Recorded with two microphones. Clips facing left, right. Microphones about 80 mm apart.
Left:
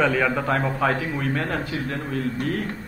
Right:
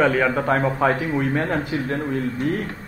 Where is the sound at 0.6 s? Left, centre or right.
Right.